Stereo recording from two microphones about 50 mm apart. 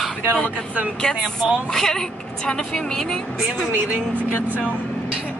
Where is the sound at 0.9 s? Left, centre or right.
Centre.